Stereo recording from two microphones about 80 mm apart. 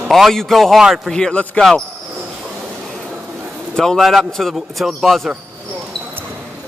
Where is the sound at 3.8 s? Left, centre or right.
Centre.